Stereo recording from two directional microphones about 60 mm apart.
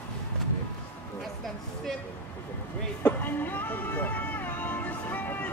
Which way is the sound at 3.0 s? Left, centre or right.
Left.